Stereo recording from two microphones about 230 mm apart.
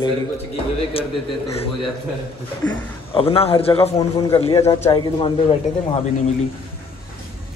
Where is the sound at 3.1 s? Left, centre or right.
Left.